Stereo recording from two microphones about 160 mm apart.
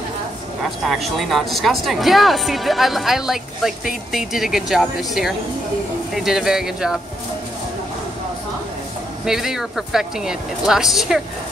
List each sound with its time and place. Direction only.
0.7 s speech: centre (ahead or behind)
9.2 s speech: 5° right (ahead or behind)